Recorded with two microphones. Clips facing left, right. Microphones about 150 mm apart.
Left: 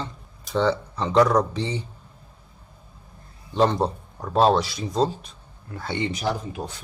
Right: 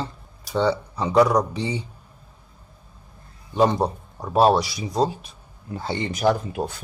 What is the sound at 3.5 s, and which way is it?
Speech, 10° right (ahead or behind).